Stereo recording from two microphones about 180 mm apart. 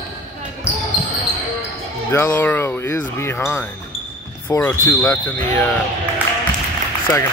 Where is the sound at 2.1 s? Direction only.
10° left (ahead or behind).